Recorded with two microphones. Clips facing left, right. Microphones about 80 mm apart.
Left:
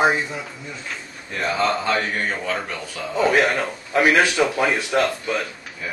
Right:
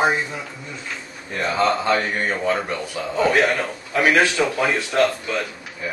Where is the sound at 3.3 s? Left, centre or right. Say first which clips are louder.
Even; centre.